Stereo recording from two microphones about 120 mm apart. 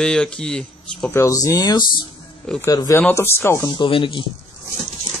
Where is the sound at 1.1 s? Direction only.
25° left (ahead or behind).